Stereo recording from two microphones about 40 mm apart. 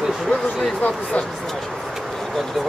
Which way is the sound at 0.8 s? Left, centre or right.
Left.